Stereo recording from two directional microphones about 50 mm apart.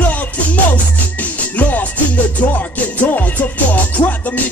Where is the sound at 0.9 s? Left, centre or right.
Left.